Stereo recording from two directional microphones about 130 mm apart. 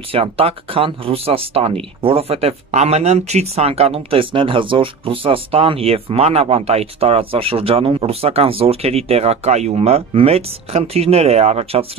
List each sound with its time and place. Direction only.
0.1 s speech: 45° right (ahead or behind)